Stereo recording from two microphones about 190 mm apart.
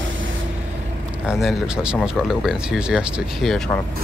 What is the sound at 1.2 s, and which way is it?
Speech, 5° right (ahead or behind).